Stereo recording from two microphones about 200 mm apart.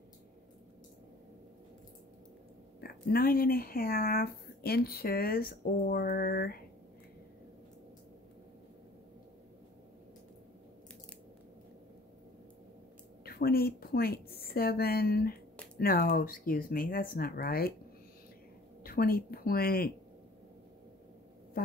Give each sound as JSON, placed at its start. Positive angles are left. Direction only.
{"t": 2.8, "sound": "speech", "side_deg": 50}
{"t": 13.2, "sound": "a woman's voice", "side_deg": 50}
{"t": 18.8, "sound": "speech", "side_deg": 50}